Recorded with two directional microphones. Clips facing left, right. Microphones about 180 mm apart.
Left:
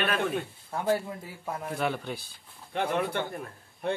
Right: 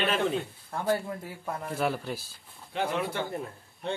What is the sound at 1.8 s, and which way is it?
Speech, centre (ahead or behind).